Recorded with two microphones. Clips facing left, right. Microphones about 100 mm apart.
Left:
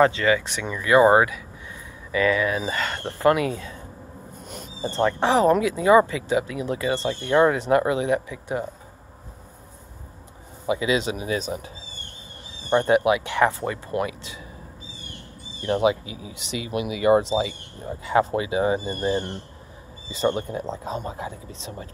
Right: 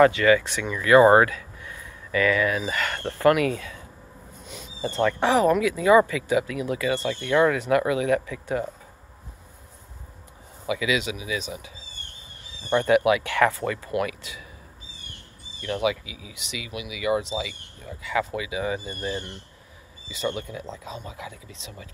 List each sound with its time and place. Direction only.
0.0 s speech: 25° left (ahead or behind)
4.4 s a sound: 50° left (ahead or behind)
4.8 s speech: 25° left (ahead or behind)
10.7 s speech: 35° left (ahead or behind)
12.6 s speech: 30° left (ahead or behind)
15.6 s speech: 35° left (ahead or behind)